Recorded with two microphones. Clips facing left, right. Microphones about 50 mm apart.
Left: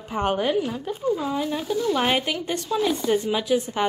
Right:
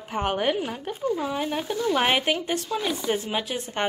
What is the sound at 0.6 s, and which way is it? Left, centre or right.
Speech, right.